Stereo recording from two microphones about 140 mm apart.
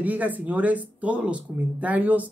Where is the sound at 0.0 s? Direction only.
10° right (ahead or behind).